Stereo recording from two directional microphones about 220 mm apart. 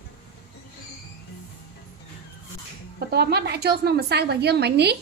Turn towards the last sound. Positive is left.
turn(degrees=-50)  # may be behind; listen again after turning